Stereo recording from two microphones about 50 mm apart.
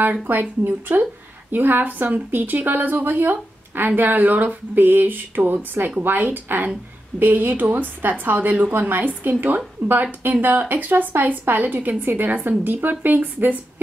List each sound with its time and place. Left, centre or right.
0.0 s a woman's voice: right